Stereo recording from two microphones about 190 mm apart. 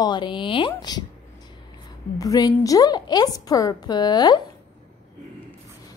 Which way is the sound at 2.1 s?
20° left (ahead or behind).